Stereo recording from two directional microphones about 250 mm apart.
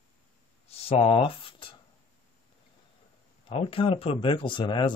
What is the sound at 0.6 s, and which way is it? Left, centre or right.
Speech, left.